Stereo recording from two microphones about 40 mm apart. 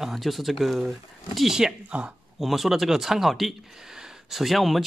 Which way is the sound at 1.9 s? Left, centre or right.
Right.